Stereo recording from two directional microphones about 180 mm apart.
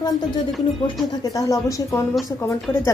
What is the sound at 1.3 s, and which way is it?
Speech, 20° left (ahead or behind).